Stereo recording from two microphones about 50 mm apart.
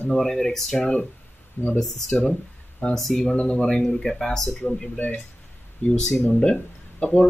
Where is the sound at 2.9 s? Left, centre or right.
Centre.